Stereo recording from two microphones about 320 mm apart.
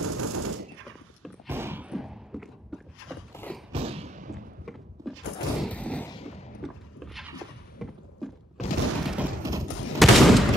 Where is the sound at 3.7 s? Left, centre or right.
Centre.